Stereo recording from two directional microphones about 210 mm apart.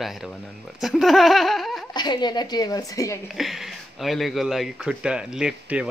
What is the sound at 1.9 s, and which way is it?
Speech, 20° left (ahead or behind).